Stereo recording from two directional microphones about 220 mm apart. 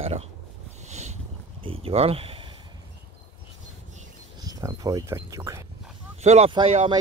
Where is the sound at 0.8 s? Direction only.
30° right (ahead or behind).